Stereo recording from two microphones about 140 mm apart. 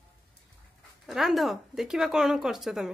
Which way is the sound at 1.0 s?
Centre (ahead or behind).